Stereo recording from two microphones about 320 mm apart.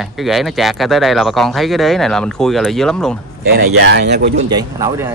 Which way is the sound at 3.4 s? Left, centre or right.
Right.